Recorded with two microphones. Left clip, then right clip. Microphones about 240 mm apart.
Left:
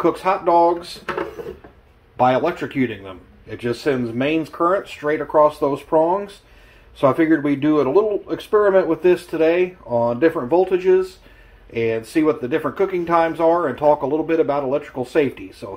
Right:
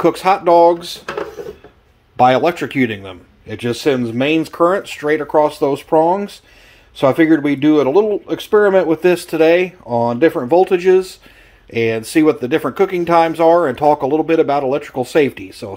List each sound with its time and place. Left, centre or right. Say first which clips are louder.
0.0 s a man's voice: right 5 dB; right
2.1 s a man's voice: right 5 dB; right